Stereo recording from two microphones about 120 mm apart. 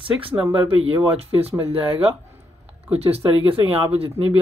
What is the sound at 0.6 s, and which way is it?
Speech, 55° right (ahead or behind).